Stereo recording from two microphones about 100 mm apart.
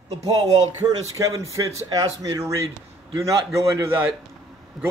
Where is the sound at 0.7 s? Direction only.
35° right (ahead or behind).